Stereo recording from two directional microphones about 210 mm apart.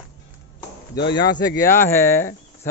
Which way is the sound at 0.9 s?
50° left (ahead or behind).